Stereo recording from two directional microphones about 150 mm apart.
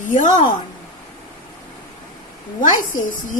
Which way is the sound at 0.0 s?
60° left (ahead or behind).